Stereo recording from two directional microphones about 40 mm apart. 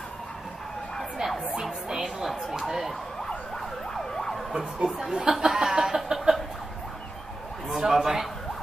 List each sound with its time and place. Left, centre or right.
1.6 s speech: centre
4.1 s emergency vehicle: centre
4.8 s chuckle: centre
7.7 s speech: centre